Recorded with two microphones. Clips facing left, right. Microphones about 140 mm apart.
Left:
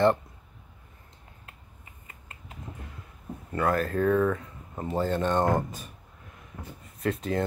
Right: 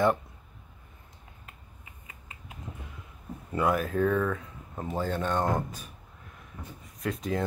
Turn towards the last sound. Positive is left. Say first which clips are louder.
# left 3 dB
turn(degrees=5)  # may be behind; listen again after turning